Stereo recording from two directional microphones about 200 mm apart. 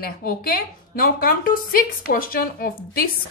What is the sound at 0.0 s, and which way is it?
A woman's voice, 45° left (ahead or behind).